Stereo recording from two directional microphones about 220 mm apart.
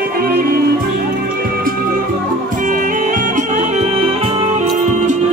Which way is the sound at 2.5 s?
35° right (ahead or behind).